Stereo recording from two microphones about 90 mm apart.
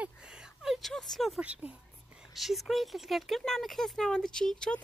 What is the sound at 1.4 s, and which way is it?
Speech, 15° right (ahead or behind).